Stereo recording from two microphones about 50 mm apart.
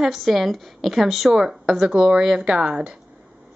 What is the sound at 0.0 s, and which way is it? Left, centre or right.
A woman's voice, centre.